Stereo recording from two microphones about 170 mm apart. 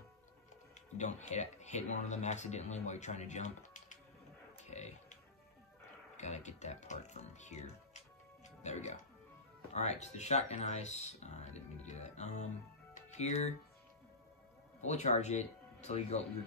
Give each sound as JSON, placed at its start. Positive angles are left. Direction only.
{"t": 0.9, "sound": "speech", "side_deg": 45}
{"t": 4.6, "sound": "music", "side_deg": 40}
{"t": 6.1, "sound": "speech", "side_deg": 40}
{"t": 8.5, "sound": "music", "side_deg": 40}
{"t": 9.8, "sound": "speech", "side_deg": 40}
{"t": 12.9, "sound": "music", "side_deg": 40}
{"t": 14.8, "sound": "speech", "side_deg": 40}